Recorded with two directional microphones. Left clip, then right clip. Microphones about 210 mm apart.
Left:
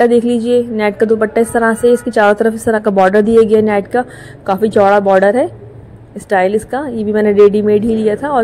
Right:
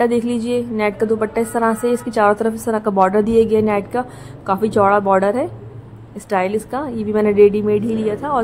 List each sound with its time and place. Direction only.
0.0 s a woman's voice: 15° left (ahead or behind)